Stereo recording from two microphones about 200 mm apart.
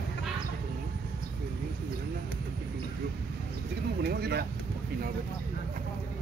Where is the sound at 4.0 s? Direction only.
55° right (ahead or behind).